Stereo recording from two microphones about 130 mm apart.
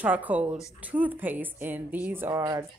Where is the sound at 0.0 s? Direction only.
10° right (ahead or behind).